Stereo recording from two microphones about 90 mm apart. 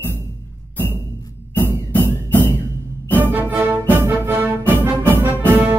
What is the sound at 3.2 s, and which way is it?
Music, 20° right (ahead or behind).